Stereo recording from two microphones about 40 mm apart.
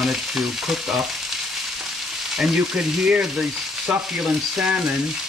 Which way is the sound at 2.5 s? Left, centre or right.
Right.